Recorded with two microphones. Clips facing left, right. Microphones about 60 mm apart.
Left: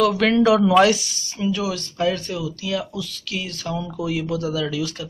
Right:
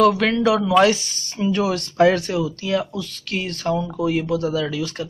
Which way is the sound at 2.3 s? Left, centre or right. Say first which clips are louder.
Right 4 dB; right.